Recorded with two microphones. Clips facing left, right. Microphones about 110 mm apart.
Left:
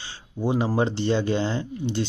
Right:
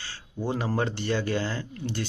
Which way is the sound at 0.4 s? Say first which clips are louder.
Left 5 dB; 15° left (ahead or behind).